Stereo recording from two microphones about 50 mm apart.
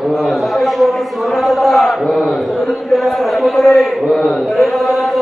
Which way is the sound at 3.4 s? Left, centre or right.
Centre.